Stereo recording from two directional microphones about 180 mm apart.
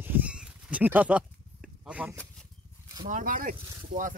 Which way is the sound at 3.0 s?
50° right (ahead or behind).